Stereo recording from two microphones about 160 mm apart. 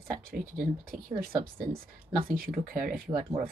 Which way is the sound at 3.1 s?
30° right (ahead or behind).